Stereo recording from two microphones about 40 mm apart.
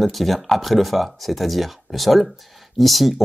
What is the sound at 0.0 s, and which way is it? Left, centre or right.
Speech, centre.